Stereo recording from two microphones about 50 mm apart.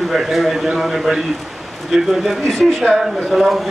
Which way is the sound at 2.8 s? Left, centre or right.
Centre.